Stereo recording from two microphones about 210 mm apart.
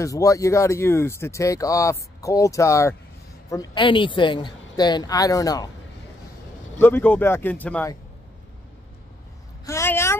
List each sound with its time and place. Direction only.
0.0 s a woman's voice: 15° left (ahead or behind)
6.8 s speech: 10° left (ahead or behind)
9.7 s speech: 10° left (ahead or behind)